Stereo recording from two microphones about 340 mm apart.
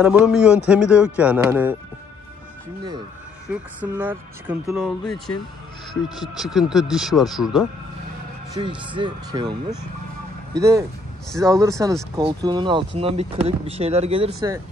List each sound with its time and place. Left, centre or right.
0.0 s speech: centre
3.4 s speech: centre
8.5 s speech: centre
10.6 s speech: centre